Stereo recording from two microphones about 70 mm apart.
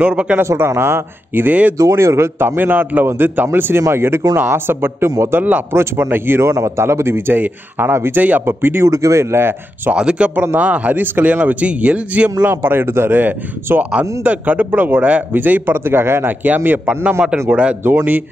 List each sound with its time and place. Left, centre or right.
0.0 s a man's voice: centre
0.4 s a man's voice: right
1.8 s a man's voice: right
5.7 s a man's voice: right
8.9 s speech: right
9.9 s a man's voice: centre
17.8 s a man's voice: right